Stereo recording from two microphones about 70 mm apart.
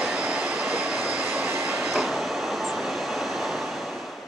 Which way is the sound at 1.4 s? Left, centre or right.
Right.